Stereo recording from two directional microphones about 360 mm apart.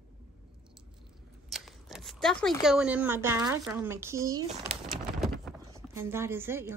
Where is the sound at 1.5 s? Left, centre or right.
Centre.